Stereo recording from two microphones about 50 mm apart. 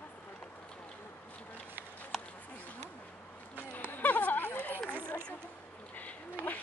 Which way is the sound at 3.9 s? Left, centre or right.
Left.